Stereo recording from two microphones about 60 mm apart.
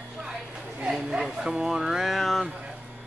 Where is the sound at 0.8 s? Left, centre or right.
Centre.